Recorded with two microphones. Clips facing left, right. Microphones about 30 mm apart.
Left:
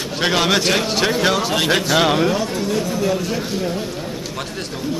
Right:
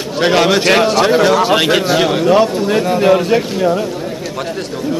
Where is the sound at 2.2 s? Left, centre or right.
Right.